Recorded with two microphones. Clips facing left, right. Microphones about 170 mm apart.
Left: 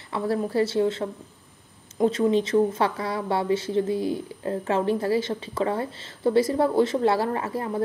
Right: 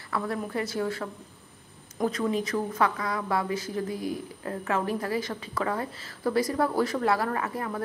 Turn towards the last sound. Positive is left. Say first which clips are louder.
# left 3 dB
turn(degrees=25)  # may be behind; listen again after turning